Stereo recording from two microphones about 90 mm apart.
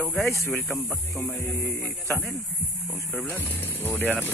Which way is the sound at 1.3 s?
20° left (ahead or behind).